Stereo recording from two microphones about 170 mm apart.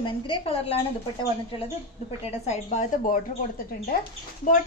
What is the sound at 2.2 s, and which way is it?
Speech, 40° left (ahead or behind).